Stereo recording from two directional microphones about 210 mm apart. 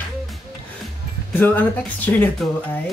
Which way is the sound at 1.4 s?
10° left (ahead or behind).